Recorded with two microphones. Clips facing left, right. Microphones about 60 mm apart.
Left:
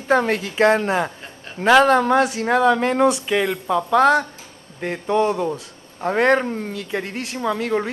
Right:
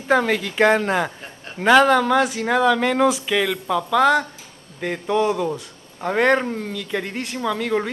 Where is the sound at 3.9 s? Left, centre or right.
Centre.